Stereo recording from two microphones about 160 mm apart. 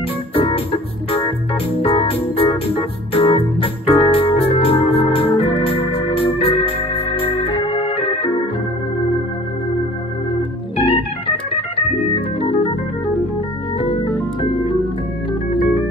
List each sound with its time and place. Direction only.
0.3 s organ: 35° left (ahead or behind)
10.8 s organ: 35° left (ahead or behind)